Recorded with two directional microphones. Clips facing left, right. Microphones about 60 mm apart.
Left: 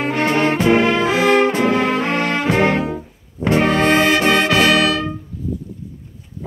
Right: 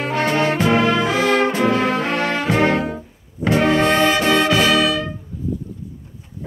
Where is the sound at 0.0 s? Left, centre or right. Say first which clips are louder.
Left 2 dB; left.